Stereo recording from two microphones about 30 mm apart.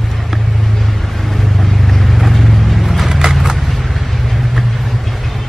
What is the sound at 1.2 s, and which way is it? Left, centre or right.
Vehicle, centre.